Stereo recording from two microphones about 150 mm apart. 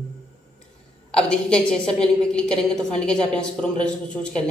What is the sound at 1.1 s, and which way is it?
A woman's voice, 5° left (ahead or behind).